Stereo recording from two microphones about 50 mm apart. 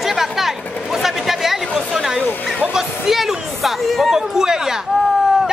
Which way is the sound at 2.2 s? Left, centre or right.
Left.